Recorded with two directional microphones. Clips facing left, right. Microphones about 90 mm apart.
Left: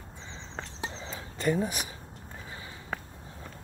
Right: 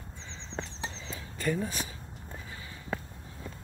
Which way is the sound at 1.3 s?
20° left (ahead or behind).